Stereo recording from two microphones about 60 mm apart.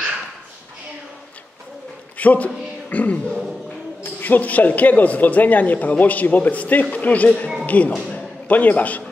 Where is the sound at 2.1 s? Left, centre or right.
Left.